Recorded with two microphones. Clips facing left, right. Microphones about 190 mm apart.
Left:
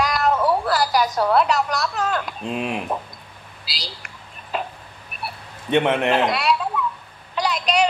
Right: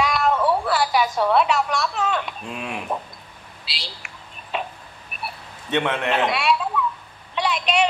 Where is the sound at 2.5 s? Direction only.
25° left (ahead or behind).